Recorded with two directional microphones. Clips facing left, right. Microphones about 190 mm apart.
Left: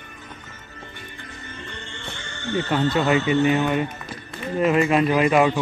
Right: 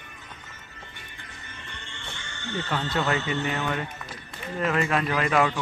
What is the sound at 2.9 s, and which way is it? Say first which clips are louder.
A man's voice: left 6 dB; 15° left (ahead or behind).